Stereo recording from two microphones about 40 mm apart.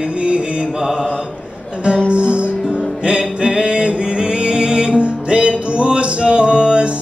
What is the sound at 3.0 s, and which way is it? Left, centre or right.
Music, right.